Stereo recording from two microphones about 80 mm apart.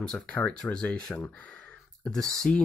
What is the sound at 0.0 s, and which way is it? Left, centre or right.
Speech, centre.